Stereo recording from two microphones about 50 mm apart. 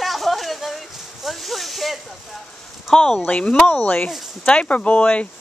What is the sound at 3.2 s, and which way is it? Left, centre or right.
Speech, left.